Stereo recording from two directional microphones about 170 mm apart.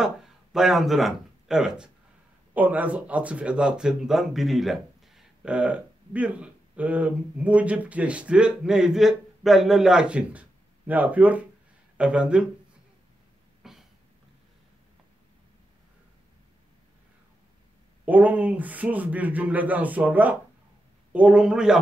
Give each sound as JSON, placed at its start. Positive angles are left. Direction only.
{"t": 0.0, "sound": "speech", "side_deg": 0}
{"t": 13.6, "sound": "a sound", "side_deg": 0}
{"t": 18.0, "sound": "speech", "side_deg": -10}